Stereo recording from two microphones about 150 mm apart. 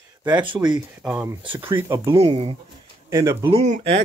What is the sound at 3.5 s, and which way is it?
Speech, 45° right (ahead or behind).